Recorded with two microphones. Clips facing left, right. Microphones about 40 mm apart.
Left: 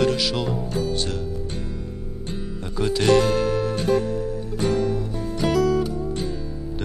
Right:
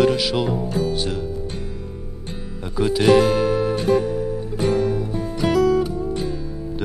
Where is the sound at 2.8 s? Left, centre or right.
Centre.